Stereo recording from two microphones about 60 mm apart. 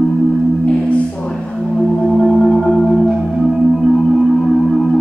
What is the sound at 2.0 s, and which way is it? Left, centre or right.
Marimba, centre.